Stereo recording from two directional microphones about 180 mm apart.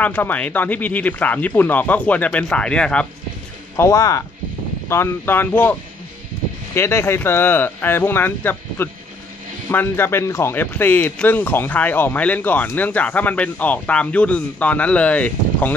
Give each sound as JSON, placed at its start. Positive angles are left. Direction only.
{"t": 0.0, "sound": "speech", "side_deg": 10}
{"t": 3.7, "sound": "speech", "side_deg": 15}